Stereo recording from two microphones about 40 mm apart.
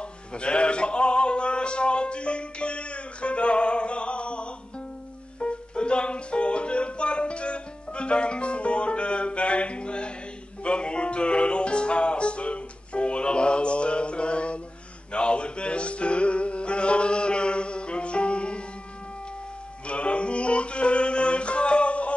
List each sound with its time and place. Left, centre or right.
0.3 s music: left
19.9 s music: left